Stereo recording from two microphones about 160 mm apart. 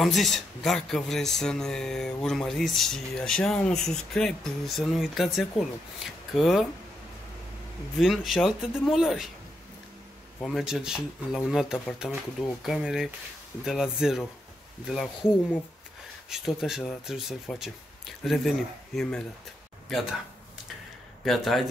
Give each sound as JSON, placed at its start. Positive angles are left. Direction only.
{"t": 0.0, "sound": "speech", "side_deg": 0}
{"t": 8.0, "sound": "speech", "side_deg": 0}
{"t": 10.4, "sound": "speech", "side_deg": 0}
{"t": 16.3, "sound": "speech", "side_deg": 0}
{"t": 21.2, "sound": "speech", "side_deg": 0}